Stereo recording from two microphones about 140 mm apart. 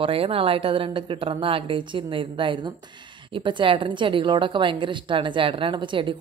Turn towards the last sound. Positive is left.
turn(degrees=-35)  # may be behind; listen again after turning